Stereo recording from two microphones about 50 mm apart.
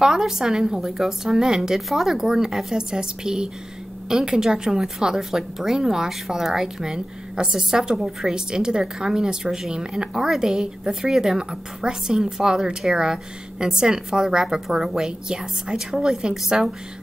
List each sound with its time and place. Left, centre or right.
0.0 s a woman's voice: centre